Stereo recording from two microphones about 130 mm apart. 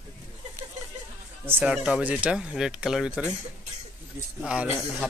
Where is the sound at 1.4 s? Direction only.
15° right (ahead or behind).